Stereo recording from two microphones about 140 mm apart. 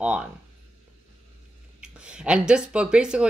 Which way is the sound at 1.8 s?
5° right (ahead or behind).